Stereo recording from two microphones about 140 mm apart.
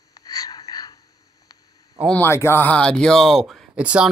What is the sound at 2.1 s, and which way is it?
Speech, 15° left (ahead or behind).